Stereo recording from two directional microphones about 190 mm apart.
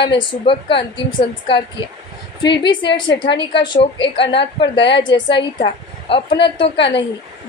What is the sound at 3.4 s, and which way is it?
Speech, 25° left (ahead or behind).